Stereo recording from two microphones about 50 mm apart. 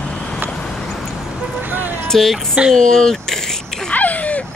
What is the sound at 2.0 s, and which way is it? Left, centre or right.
Speech, centre.